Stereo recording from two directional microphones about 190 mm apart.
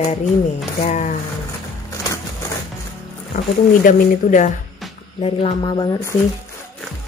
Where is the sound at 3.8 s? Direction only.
45° left (ahead or behind).